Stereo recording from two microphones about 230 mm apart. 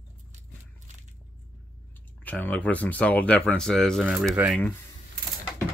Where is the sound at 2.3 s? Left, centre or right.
Centre.